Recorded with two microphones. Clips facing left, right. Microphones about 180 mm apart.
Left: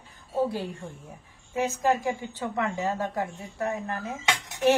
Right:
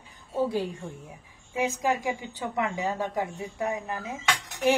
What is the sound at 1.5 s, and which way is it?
A woman's voice, 15° right (ahead or behind).